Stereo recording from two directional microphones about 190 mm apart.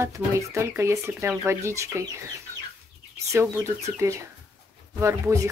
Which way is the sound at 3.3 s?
15° right (ahead or behind).